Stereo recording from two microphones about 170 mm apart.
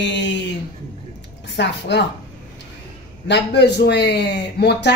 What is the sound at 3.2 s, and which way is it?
A man's voice, 85° left.